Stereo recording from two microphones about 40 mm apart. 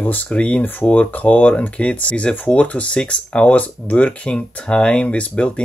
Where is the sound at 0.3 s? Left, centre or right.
Left.